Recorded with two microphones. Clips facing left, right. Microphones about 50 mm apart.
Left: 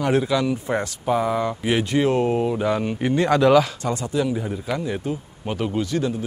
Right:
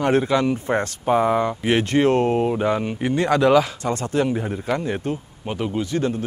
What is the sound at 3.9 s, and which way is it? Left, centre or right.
A man's voice, right.